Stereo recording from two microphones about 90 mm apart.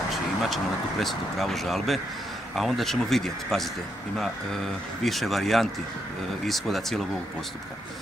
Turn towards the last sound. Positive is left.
turn(degrees=0)  # may be behind; listen again after turning